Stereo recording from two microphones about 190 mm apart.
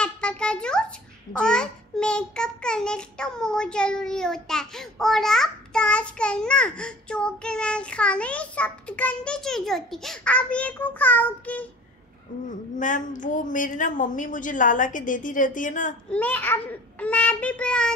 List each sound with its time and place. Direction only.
0.0 s a sound: 5° left (ahead or behind)
1.4 s child singing: 5° left (ahead or behind)
12.7 s a woman's voice: 40° left (ahead or behind)
16.1 s child singing: 10° left (ahead or behind)